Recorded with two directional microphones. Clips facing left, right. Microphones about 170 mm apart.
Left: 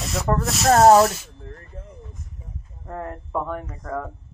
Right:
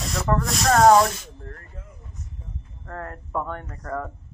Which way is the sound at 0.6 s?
30° left (ahead or behind).